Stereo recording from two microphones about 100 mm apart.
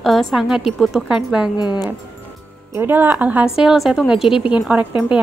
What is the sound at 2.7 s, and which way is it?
Speech, 20° right (ahead or behind).